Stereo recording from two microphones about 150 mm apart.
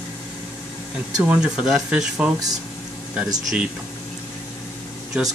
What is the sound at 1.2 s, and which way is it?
Speech, 5° right (ahead or behind).